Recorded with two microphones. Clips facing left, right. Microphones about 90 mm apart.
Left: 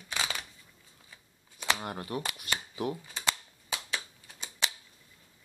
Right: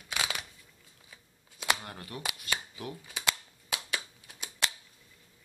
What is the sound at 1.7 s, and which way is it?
Speech, 30° left (ahead or behind).